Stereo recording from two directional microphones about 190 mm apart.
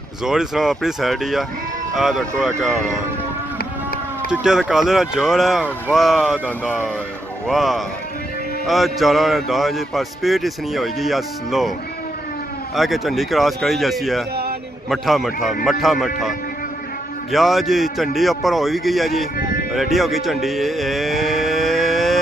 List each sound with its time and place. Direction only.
0.2 s speech: 5° right (ahead or behind)
3.5 s run: 50° left (ahead or behind)
4.3 s speech: 5° right (ahead or behind)
7.4 s speech: centre (ahead or behind)
12.7 s speech: centre (ahead or behind)